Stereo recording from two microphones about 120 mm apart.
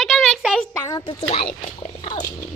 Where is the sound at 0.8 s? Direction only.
40° left (ahead or behind).